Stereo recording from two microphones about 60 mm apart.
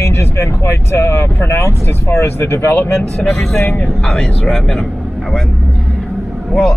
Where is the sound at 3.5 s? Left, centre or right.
Left.